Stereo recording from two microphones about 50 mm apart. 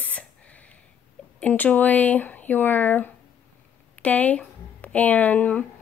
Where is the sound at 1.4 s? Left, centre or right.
Left.